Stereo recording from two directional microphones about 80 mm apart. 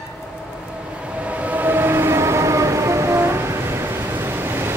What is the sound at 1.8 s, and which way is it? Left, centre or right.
Train, right.